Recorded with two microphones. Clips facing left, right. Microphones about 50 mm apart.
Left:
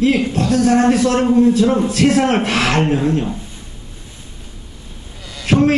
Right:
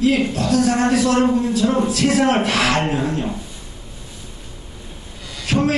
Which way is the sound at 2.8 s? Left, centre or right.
Right.